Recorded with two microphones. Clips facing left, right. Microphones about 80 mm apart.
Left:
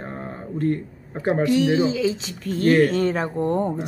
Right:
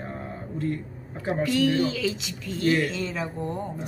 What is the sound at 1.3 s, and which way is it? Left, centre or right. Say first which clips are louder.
Speech: left 4 dB; left.